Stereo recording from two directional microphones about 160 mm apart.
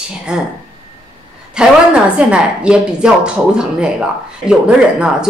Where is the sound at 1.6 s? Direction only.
5° right (ahead or behind).